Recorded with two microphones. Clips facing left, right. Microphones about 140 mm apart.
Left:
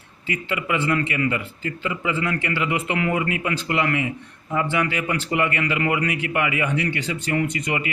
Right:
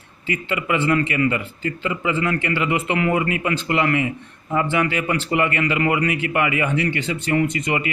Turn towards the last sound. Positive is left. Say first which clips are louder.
# right 3 dB
turn(degrees=-30)  # may be behind; listen again after turning